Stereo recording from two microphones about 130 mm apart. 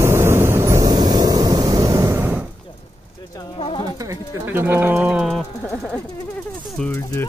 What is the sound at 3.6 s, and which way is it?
Bird, 40° left (ahead or behind).